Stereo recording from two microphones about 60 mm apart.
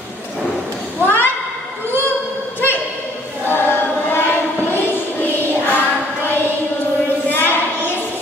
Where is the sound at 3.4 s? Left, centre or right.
Left.